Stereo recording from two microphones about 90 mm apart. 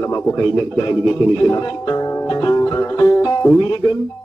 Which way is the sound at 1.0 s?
40° left (ahead or behind).